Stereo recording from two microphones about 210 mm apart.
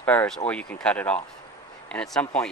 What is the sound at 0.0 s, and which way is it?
Speech, 10° left (ahead or behind).